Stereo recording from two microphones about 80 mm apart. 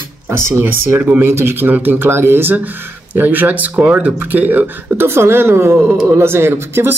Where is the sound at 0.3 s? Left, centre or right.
Right.